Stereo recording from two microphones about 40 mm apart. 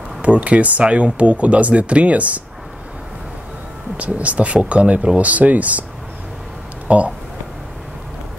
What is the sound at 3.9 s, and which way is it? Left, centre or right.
Speech, right.